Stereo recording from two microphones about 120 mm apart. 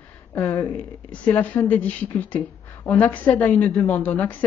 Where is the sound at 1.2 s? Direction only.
15° left (ahead or behind).